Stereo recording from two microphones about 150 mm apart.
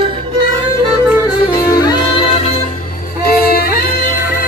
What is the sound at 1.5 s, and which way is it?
Music, 25° left (ahead or behind).